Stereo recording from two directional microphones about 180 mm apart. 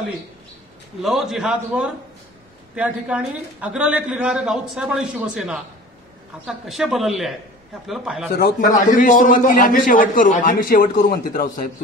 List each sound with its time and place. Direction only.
1.0 s a woman's voice: centre (ahead or behind)
8.4 s a man's voice: 60° left (ahead or behind)
8.7 s a man's voice: 45° left (ahead or behind)